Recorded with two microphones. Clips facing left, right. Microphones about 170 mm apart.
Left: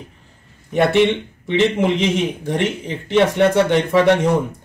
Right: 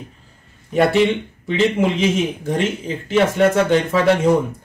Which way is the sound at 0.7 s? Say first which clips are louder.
Even; 20° left (ahead or behind).